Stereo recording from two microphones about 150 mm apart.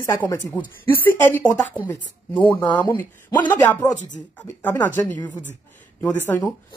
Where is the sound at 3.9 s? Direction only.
55° left (ahead or behind).